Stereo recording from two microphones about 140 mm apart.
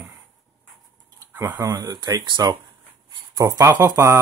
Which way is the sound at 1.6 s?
30° right (ahead or behind).